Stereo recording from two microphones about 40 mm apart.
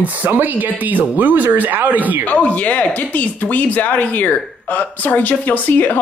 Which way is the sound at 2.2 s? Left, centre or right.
Left.